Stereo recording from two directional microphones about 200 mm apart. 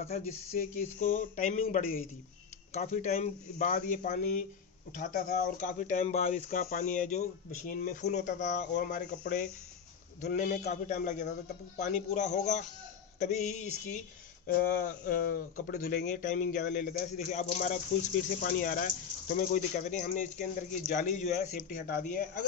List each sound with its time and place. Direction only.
0.9 s speech: 40° left (ahead or behind)